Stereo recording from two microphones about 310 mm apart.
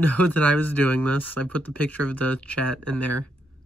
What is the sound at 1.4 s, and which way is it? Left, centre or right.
Speech, centre.